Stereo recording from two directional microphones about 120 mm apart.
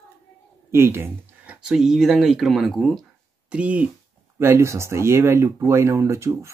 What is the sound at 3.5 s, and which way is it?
Speech, 10° right (ahead or behind).